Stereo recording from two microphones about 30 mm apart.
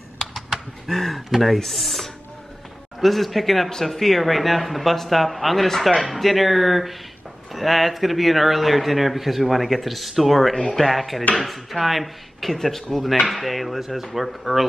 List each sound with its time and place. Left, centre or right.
0.8 s speech: centre
5.7 s speech: centre
6.1 s speech: centre
10.5 s speech: left
10.8 s speech: centre
12.4 s speech: centre